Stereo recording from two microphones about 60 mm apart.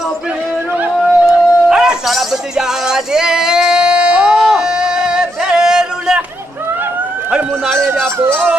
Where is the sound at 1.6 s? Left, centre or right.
Centre.